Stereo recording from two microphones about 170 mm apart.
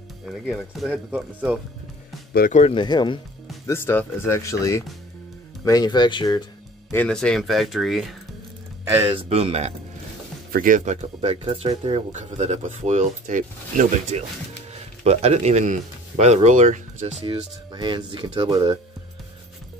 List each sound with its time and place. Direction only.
0.2 s speech: centre (ahead or behind)
2.5 s speech: 35° left (ahead or behind)
3.6 s speech: 15° left (ahead or behind)
6.9 s speech: 5° left (ahead or behind)
8.8 s speech: 15° right (ahead or behind)
9.1 s speech: 35° right (ahead or behind)
10.5 s speech: 50° right (ahead or behind)
11.1 s speech: 35° right (ahead or behind)